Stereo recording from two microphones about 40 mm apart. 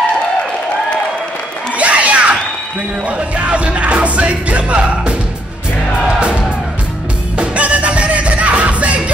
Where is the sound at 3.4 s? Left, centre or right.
Right.